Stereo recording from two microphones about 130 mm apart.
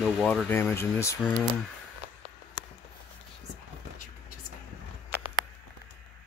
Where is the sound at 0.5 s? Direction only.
15° left (ahead or behind).